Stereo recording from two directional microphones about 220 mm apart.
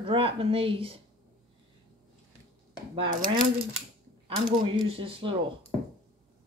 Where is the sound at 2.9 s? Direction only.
25° right (ahead or behind).